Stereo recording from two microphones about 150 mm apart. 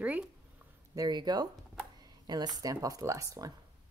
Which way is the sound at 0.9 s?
30° right (ahead or behind).